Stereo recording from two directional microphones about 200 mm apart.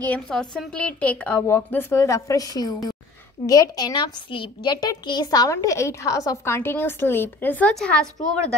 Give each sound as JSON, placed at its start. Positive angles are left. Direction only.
{"t": 0.0, "sound": "a child's voice", "side_deg": 5}